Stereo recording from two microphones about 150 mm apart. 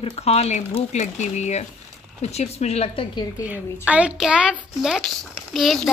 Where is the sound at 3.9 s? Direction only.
5° right (ahead or behind).